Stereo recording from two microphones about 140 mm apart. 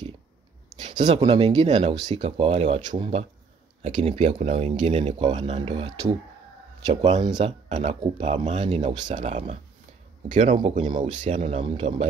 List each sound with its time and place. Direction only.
1.0 s speech: 45° right (ahead or behind)
8.9 s speech: 30° right (ahead or behind)
10.3 s speech: 50° right (ahead or behind)